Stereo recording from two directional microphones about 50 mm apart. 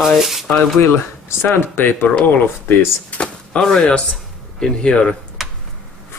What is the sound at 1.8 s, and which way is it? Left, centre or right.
Speech, left.